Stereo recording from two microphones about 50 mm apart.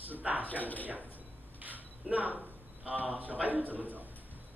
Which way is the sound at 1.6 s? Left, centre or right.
Right.